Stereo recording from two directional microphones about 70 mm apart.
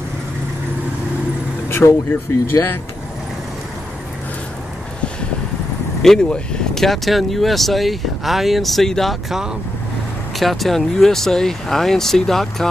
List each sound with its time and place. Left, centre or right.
1.7 s vehicle: left
6.0 s speech: centre
10.4 s speech: centre